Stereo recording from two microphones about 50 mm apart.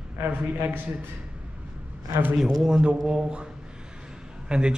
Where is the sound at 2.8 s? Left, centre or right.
Right.